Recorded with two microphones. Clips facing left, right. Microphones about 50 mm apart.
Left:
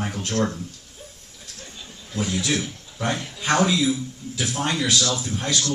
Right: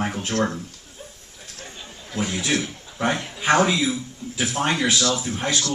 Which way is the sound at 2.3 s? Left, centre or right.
Right.